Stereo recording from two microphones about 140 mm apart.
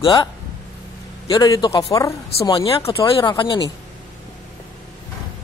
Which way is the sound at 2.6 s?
40° left (ahead or behind).